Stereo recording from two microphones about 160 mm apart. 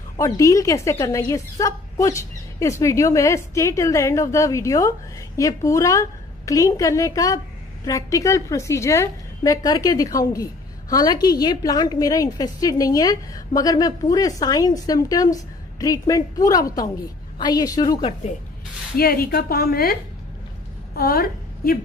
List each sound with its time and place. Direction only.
0.2 s a woman's voice: 20° left (ahead or behind)
18.9 s a woman's voice: 70° left (ahead or behind)